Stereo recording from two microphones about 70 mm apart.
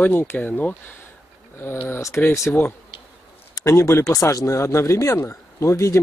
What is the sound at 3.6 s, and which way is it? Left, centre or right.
Speech, left.